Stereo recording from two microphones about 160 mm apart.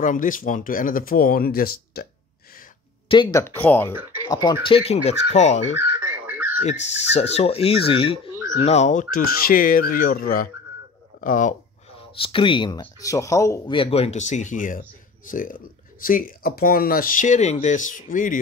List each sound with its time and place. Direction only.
0.0 s speech: 55° left (ahead or behind)
3.1 s speech: 30° left (ahead or behind)
3.4 s speech: 10° left (ahead or behind)
3.9 s speech: 15° right (ahead or behind)
4.3 s speech: 25° left (ahead or behind)
4.6 s speech: 40° left (ahead or behind)
5.8 s bird: 10° right (ahead or behind)
6.8 s speech: 90° left
7.3 s speech: 40° left (ahead or behind)
9.1 s speech: 65° left (ahead or behind)
12.2 s speech: 30° left (ahead or behind)
13.0 s speech: 20° left (ahead or behind)
13.7 s speech: 35° left (ahead or behind); by 18.4 s 55° left (ahead or behind)